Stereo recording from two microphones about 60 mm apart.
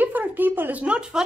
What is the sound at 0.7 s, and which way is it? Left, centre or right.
Speech, centre.